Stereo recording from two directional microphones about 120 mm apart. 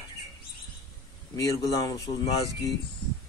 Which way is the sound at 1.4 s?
30° left (ahead or behind).